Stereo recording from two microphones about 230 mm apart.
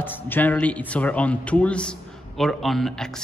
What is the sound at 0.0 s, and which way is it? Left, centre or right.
A man's voice, centre.